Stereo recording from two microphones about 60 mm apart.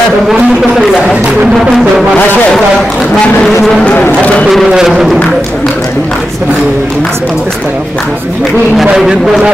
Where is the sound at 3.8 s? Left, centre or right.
Left.